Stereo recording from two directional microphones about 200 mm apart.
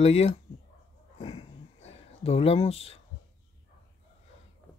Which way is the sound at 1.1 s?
30° left (ahead or behind).